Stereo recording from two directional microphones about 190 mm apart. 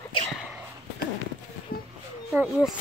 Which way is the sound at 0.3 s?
5° right (ahead or behind).